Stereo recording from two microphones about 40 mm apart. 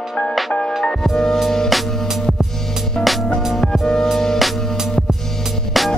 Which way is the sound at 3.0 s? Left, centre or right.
Left.